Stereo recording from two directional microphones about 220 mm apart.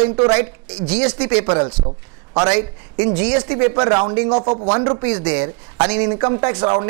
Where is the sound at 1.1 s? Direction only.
10° right (ahead or behind).